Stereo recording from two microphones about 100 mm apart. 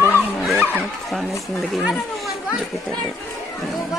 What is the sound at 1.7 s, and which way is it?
Speech, centre (ahead or behind).